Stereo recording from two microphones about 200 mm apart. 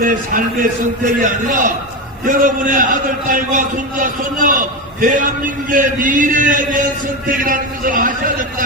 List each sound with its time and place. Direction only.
0.0 s a man's voice: 40° right (ahead or behind)